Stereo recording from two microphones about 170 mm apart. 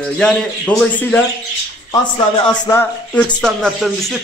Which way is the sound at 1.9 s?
20° left (ahead or behind).